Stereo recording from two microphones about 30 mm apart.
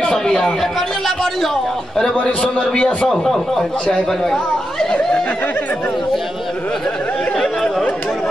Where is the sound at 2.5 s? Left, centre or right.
Left.